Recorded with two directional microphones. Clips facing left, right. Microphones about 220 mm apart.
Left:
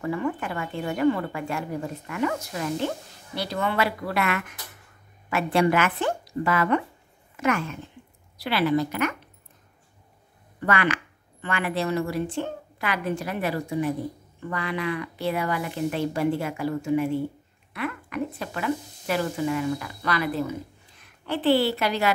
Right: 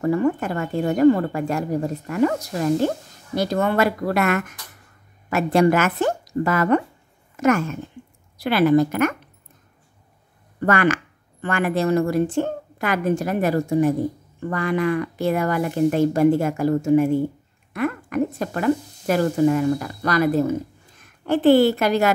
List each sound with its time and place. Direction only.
0.0 s a woman's voice: 40° right (ahead or behind)
10.6 s speech: 45° right (ahead or behind)